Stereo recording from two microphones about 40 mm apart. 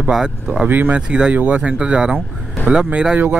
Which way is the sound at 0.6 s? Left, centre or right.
Right.